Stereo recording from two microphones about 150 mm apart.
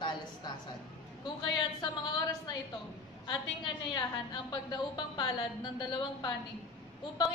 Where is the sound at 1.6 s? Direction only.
30° left (ahead or behind).